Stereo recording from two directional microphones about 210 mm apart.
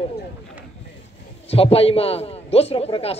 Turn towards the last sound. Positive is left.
turn(degrees=30)  # may be behind; listen again after turning